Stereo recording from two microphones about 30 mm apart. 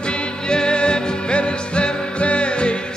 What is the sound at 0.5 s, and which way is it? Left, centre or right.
Music, left.